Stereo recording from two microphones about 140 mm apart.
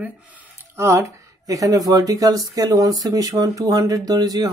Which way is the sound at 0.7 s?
20° right (ahead or behind).